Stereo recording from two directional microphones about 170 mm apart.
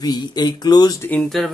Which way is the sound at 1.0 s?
10° left (ahead or behind).